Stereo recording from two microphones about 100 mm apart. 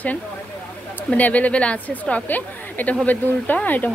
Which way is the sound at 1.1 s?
15° left (ahead or behind).